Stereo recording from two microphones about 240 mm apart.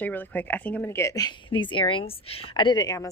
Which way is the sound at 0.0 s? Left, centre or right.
Centre.